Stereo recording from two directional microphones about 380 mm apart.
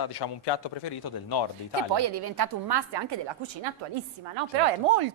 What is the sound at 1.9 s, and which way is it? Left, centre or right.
A woman's voice, right.